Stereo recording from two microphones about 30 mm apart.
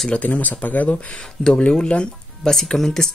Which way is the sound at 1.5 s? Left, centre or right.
Left.